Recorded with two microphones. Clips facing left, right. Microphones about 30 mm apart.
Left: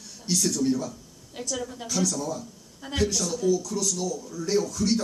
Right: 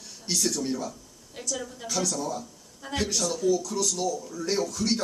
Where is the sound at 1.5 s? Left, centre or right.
Centre.